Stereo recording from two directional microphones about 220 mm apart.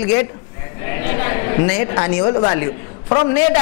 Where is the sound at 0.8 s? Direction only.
15° left (ahead or behind).